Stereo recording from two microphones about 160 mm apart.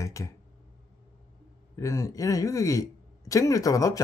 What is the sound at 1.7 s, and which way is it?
Speech, 20° left (ahead or behind).